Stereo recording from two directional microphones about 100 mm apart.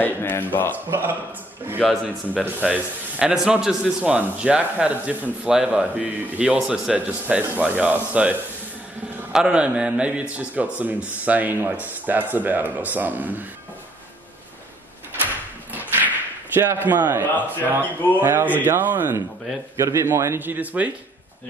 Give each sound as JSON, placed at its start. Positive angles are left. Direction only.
{"t": 0.0, "sound": "speech", "side_deg": 20}
{"t": 0.8, "sound": "speech", "side_deg": -25}
{"t": 1.8, "sound": "speech", "side_deg": 0}
{"t": 2.4, "sound": "a man's voice", "side_deg": -15}
{"t": 16.5, "sound": "speech", "side_deg": -20}
{"t": 19.8, "sound": "speech", "side_deg": -30}